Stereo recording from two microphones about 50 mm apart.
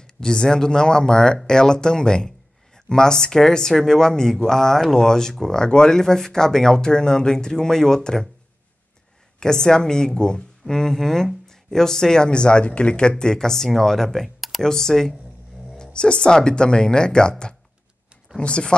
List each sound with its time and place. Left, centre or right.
0.0 s speech: centre
9.4 s speech: centre